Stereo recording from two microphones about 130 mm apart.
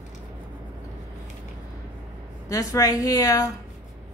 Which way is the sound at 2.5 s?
25° left (ahead or behind).